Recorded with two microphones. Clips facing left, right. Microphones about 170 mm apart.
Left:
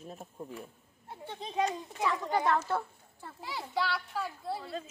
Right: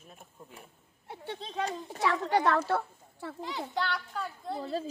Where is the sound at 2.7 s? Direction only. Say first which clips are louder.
Right 3 dB; 75° right (ahead or behind).